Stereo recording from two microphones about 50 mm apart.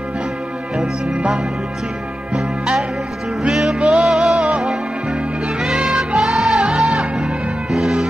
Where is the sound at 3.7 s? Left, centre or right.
Centre.